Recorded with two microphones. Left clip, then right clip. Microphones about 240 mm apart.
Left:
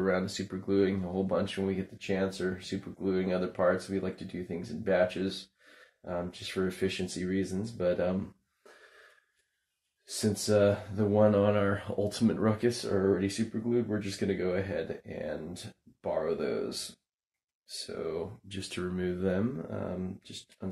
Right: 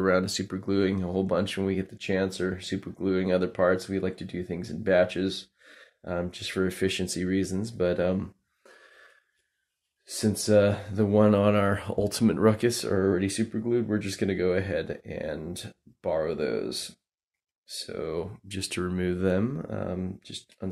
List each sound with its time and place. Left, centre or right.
0.0 s speech: right
10.0 s speech: right